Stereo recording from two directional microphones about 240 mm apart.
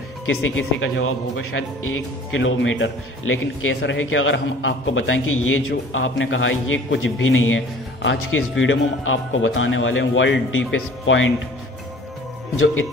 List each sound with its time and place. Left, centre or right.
0.6 s a man's voice: left